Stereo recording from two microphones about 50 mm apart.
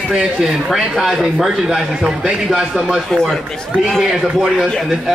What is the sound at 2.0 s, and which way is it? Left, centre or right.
Speech, centre.